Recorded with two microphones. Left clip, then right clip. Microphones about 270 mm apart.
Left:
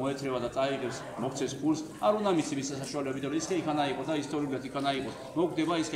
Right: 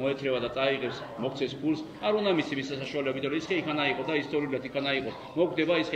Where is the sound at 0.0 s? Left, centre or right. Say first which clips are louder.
Right 3 dB; left.